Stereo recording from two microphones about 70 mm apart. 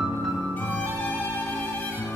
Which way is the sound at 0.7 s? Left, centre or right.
Left.